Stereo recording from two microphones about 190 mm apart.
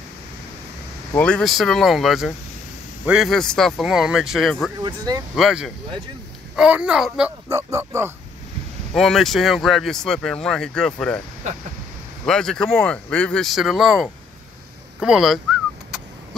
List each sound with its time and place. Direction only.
1.1 s speech: 5° left (ahead or behind)
4.8 s speech: 20° right (ahead or behind)
5.3 s speech: 5° right (ahead or behind)
8.9 s speech: centre (ahead or behind)
12.3 s speech: 5° left (ahead or behind)